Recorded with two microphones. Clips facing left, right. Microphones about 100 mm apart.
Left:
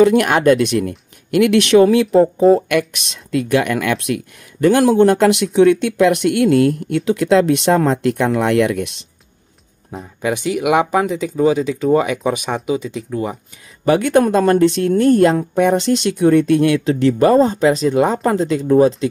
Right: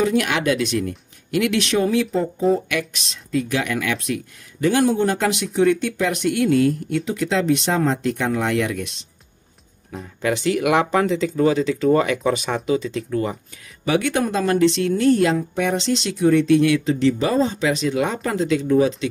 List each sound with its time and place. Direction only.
0.0 s speech: 55° left (ahead or behind)
10.2 s speech: 15° left (ahead or behind)
13.8 s speech: 45° left (ahead or behind)